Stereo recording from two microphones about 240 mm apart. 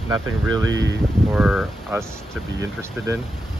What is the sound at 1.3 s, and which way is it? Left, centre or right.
Speech, centre.